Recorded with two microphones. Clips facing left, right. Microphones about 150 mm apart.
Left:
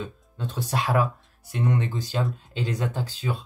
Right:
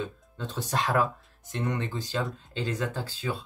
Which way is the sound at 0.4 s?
10° left (ahead or behind).